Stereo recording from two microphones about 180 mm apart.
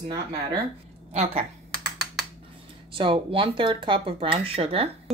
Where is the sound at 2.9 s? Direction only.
30° right (ahead or behind).